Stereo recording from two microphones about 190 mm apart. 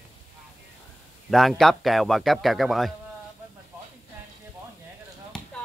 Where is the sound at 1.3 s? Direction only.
Centre (ahead or behind).